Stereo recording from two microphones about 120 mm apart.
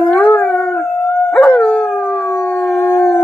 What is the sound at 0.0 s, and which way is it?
Howl, 10° left (ahead or behind).